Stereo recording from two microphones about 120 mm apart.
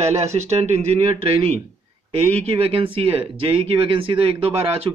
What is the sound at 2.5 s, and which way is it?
Speech, 50° right (ahead or behind).